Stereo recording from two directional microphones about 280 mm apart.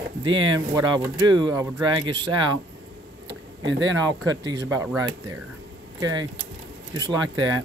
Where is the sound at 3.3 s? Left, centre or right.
Right.